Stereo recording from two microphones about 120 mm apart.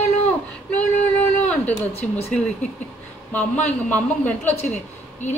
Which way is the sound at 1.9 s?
60° left (ahead or behind).